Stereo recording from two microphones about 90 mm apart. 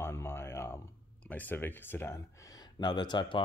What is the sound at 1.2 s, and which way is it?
Speech, 20° left (ahead or behind).